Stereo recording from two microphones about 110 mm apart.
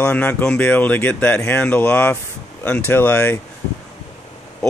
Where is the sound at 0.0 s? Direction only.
15° left (ahead or behind).